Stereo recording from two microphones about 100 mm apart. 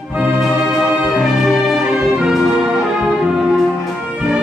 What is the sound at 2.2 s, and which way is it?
Music, 5° right (ahead or behind).